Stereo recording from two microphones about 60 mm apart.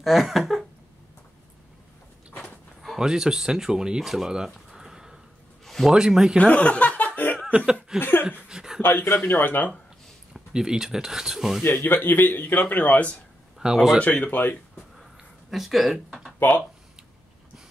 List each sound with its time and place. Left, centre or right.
0.0 s a sound: centre
3.0 s speech: centre
4.6 s a sound: centre
5.9 s speech: centre
6.3 s speech: left
8.0 s speech: left
8.5 s a sound: centre
9.2 s speech: left
10.3 s speech: centre
11.6 s a man's voice: left
13.6 s speech: centre
14.0 s speech: left
15.5 s speech: centre
16.3 s speech: left